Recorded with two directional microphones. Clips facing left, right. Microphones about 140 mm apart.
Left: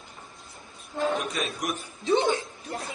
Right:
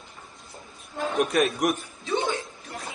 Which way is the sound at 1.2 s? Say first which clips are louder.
Right 8 dB; 50° right (ahead or behind).